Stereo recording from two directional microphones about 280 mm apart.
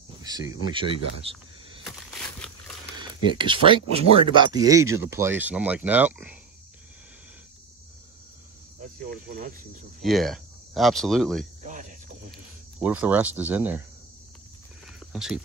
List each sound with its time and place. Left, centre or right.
0.2 s speech: centre
1.9 s a sound: centre
3.3 s speech: centre
9.1 s speech: right
10.0 s speech: centre
11.6 s cricket: right
12.3 s speech: centre
15.1 s speech: centre